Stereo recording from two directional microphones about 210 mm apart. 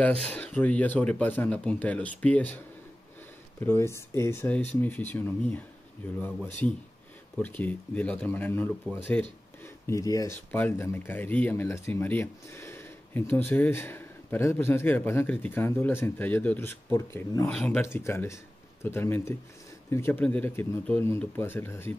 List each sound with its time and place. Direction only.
0.0 s speech: 5° left (ahead or behind)
3.6 s speech: 10° left (ahead or behind)
7.4 s speech: 10° left (ahead or behind)